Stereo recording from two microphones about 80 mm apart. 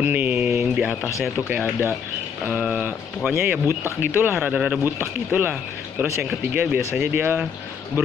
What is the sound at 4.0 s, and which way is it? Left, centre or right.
Speech, right.